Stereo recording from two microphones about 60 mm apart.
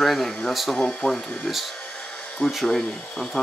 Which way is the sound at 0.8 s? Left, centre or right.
Centre.